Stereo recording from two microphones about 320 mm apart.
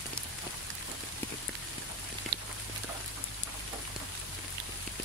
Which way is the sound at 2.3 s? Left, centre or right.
Right.